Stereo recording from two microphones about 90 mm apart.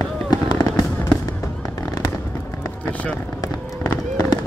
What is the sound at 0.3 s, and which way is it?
Fireworks, 50° left (ahead or behind).